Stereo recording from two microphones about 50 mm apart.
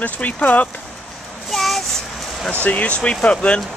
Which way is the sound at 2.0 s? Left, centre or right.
Centre.